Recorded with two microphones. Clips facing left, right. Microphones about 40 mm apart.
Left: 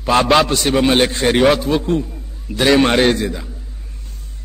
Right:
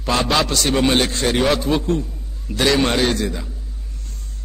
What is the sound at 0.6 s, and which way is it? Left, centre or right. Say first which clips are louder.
Speech: left 3 dB; centre.